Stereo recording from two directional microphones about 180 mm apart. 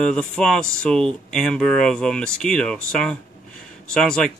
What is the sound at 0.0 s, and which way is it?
Speech, 5° left (ahead or behind).